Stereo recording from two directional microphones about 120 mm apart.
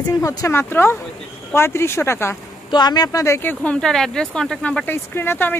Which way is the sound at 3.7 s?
5° left (ahead or behind).